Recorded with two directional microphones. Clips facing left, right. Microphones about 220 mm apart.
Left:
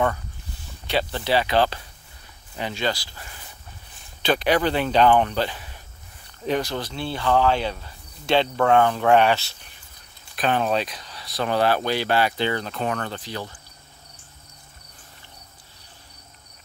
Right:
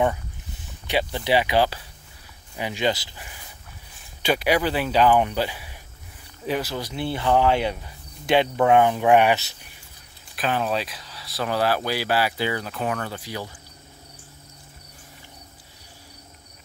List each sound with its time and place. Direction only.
0.8 s speech: 15° right (ahead or behind)
10.3 s speech: 5° right (ahead or behind)